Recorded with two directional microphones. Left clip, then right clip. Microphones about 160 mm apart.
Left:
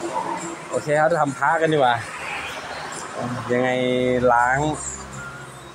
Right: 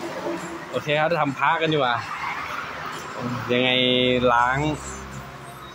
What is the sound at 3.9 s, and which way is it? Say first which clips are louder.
Mantra: right 1 dB; 40° left (ahead or behind).